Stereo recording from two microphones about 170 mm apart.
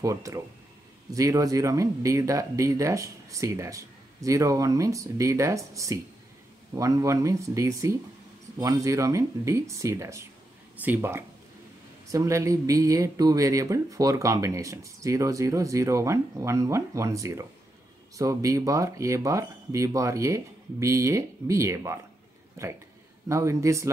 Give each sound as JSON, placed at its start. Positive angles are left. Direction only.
{"t": 0.0, "sound": "speech", "side_deg": -20}